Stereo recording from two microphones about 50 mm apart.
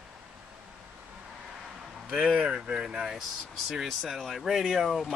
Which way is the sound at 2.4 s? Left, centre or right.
Centre.